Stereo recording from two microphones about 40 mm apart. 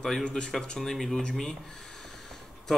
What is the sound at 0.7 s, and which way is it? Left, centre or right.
Speech, centre.